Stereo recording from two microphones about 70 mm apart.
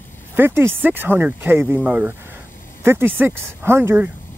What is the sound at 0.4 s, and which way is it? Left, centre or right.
Speech, right.